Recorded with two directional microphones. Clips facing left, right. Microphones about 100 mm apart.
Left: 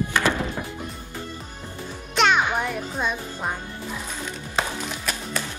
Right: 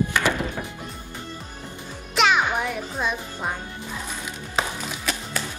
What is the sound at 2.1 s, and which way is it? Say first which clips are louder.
Music: even; centre (ahead or behind).